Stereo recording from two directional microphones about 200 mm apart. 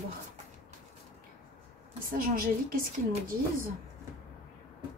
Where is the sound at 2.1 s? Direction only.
45° right (ahead or behind).